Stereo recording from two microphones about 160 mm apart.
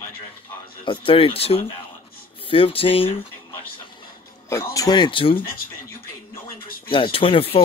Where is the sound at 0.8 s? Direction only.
35° left (ahead or behind).